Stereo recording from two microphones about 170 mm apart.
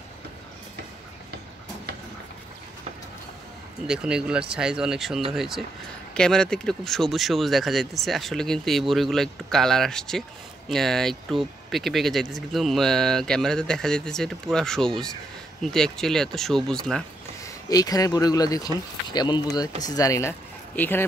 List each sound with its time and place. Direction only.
3.8 s speech: 5° right (ahead or behind)
17.6 s speech: 20° left (ahead or behind)